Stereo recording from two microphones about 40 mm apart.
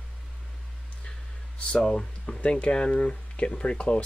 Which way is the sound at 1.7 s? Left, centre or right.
Left.